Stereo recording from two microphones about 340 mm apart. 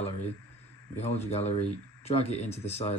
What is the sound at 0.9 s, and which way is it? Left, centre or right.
Speech, centre.